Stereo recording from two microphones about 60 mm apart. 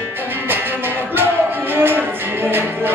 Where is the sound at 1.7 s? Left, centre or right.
Right.